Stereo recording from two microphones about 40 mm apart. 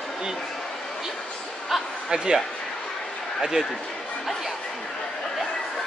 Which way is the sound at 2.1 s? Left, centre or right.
Centre.